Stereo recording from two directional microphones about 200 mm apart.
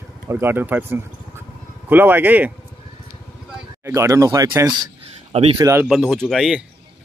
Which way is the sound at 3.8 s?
15° right (ahead or behind).